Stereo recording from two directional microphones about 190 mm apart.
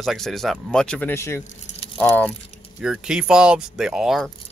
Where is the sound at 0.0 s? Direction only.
Centre (ahead or behind).